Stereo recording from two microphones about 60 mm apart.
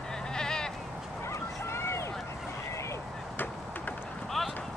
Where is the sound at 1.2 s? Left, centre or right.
Left.